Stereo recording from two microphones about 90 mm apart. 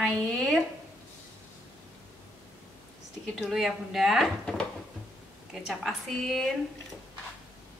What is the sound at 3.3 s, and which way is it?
Speech, centre (ahead or behind).